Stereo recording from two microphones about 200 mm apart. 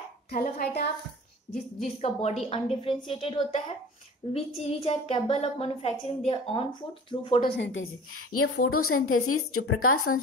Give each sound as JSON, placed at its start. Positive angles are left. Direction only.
{"t": 0.3, "sound": "a woman's voice", "side_deg": 50}
{"t": 1.8, "sound": "a woman's voice", "side_deg": 35}
{"t": 7.5, "sound": "a woman's voice", "side_deg": 60}